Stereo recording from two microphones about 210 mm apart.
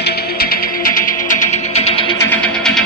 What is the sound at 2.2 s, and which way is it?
Music, 5° left (ahead or behind).